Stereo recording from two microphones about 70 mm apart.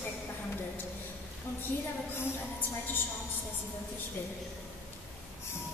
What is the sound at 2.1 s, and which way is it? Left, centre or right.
Speech, left.